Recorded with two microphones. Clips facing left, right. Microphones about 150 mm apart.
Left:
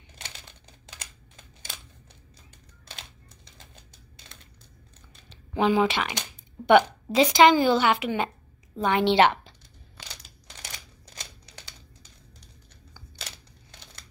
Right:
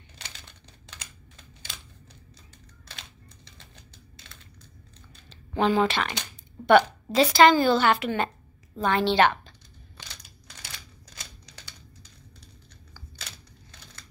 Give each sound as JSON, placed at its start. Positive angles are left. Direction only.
{"t": 5.3, "sound": "a woman's voice", "side_deg": 10}